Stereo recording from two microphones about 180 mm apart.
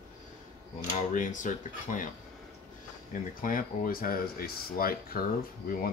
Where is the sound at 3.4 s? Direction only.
50° left (ahead or behind).